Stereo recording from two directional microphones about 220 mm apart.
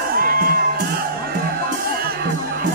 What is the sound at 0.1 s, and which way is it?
Music, 40° right (ahead or behind).